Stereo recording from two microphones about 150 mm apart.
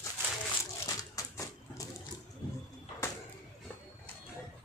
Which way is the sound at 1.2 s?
20° left (ahead or behind).